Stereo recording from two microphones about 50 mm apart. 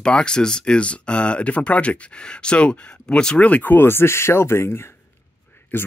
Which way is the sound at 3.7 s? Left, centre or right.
Left.